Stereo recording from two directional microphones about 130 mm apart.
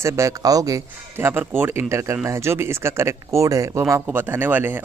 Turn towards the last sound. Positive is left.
turn(degrees=-15)  # may be behind; listen again after turning